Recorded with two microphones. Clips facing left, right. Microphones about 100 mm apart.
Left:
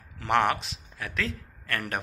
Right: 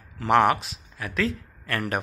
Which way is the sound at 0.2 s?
5° right (ahead or behind).